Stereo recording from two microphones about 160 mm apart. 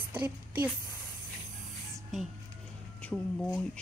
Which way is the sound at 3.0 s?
10° left (ahead or behind).